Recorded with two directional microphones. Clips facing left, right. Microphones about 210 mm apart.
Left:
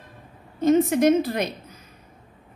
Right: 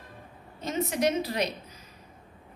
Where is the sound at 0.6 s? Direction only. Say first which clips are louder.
Left 11 dB; 50° left (ahead or behind).